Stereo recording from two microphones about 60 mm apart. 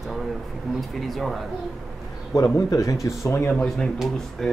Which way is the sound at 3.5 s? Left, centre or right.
Centre.